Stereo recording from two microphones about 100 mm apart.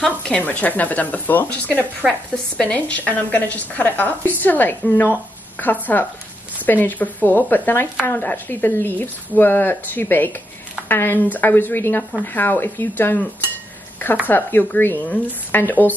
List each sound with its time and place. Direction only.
0.0 s speech: 10° left (ahead or behind)